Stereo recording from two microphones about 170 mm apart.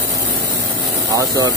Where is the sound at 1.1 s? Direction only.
20° right (ahead or behind).